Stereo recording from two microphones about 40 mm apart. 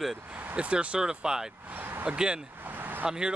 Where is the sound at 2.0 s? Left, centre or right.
Right.